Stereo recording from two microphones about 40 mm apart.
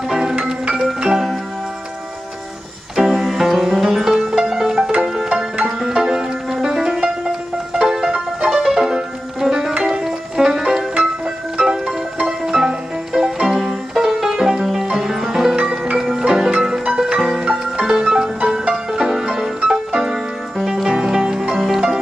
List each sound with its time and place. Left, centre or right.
0.5 s music: centre
3.0 s music: centre
13.5 s music: centre